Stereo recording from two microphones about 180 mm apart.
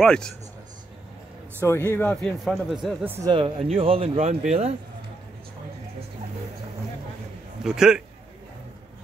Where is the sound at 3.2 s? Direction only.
25° right (ahead or behind).